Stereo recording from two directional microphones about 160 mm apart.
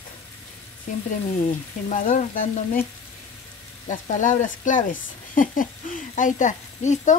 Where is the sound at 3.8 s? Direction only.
50° left (ahead or behind).